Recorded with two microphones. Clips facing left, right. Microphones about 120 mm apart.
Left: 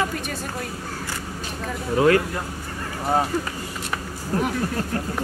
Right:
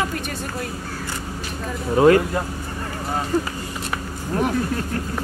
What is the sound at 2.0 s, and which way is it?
Speech, 35° right (ahead or behind).